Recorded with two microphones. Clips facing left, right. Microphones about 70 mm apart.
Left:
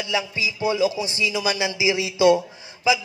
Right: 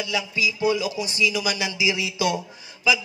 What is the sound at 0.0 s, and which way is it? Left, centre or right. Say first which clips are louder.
Speech: even; left.